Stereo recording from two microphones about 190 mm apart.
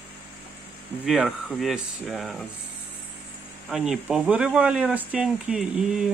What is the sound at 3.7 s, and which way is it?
Speech, centre (ahead or behind).